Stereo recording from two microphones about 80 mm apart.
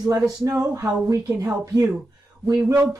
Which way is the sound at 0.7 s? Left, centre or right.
Right.